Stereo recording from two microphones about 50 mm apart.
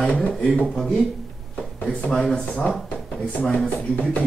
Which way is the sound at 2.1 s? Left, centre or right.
Centre.